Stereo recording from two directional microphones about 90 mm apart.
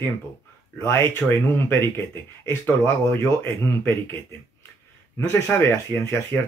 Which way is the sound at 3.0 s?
30° left (ahead or behind).